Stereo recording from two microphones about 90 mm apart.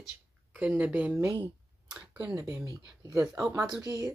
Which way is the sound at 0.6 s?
15° right (ahead or behind).